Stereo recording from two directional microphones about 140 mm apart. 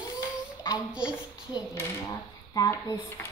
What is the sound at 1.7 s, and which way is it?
Speech, 20° left (ahead or behind).